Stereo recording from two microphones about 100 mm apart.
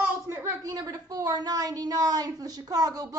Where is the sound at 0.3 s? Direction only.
30° right (ahead or behind).